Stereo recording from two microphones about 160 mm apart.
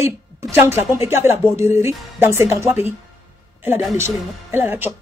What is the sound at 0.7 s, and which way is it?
Speech, 15° right (ahead or behind).